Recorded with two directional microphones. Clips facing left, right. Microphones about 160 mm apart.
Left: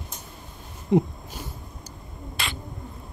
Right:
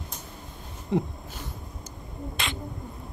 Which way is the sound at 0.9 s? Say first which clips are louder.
Left 6 dB; 15° left (ahead or behind).